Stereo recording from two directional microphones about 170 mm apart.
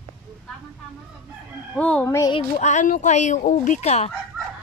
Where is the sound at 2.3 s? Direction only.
40° left (ahead or behind).